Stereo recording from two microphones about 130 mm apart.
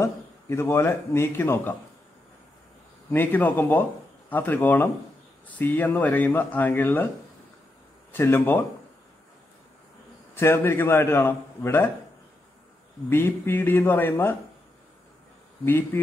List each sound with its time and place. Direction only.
0.0 s a man's voice: 20° left (ahead or behind)
3.1 s a man's voice: 15° left (ahead or behind)
8.1 s a man's voice: 15° left (ahead or behind)
10.3 s a man's voice: 20° left (ahead or behind)
13.1 s a man's voice: 15° left (ahead or behind)
15.6 s a man's voice: 15° left (ahead or behind)